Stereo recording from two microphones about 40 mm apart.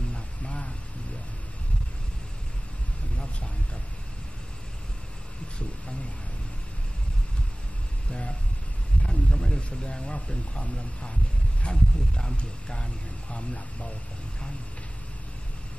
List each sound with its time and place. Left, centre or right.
0.1 s music: left
8.1 s a sound: left
9.7 s speech: left